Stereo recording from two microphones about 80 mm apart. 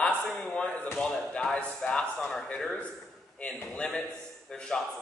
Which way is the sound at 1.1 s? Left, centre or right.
Centre.